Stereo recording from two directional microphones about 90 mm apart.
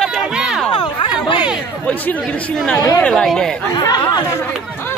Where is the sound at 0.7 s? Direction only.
55° left (ahead or behind).